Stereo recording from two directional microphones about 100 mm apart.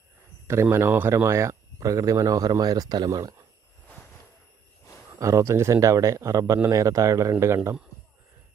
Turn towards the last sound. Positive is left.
turn(degrees=-30)  # may be behind; listen again after turning